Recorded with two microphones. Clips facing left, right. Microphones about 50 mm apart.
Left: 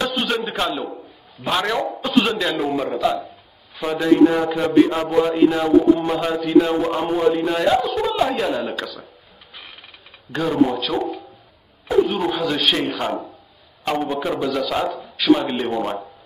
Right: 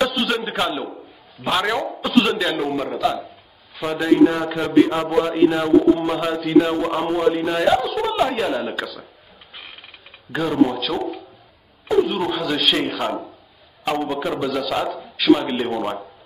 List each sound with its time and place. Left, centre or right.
0.0 s a sound: centre
1.4 s a man's voice: centre
10.3 s a man's voice: centre